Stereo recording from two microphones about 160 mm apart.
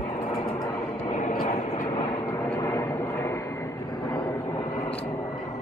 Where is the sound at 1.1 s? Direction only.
50° left (ahead or behind).